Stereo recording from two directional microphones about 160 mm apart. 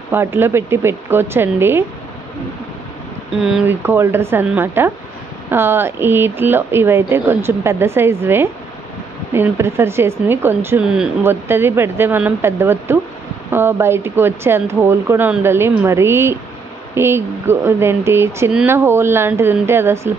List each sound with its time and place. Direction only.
0.1 s speech: 15° right (ahead or behind)
3.3 s speech: 5° right (ahead or behind)
3.8 s speech: 15° right (ahead or behind)